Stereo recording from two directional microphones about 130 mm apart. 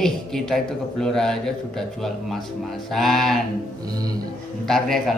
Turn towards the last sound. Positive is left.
turn(degrees=0)  # may be behind; listen again after turning